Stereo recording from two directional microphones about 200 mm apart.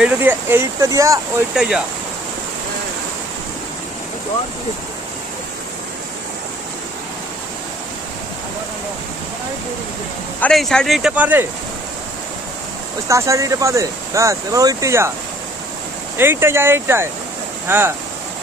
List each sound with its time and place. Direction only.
0.0 s speech: 10° right (ahead or behind)
1.5 s speech: 5° right (ahead or behind)
10.4 s speech: 5° left (ahead or behind)
13.1 s speech: 15° right (ahead or behind)
16.2 s speech: 10° right (ahead or behind)